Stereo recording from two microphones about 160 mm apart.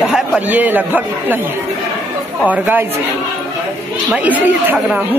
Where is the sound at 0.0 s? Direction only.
5° right (ahead or behind).